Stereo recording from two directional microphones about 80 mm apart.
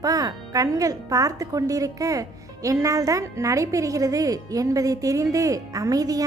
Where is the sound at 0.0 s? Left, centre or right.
Right.